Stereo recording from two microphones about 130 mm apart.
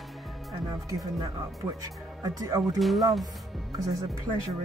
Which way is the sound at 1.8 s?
30° right (ahead or behind).